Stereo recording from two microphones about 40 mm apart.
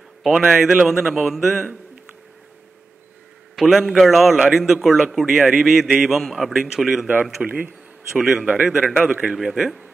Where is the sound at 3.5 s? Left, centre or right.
Centre.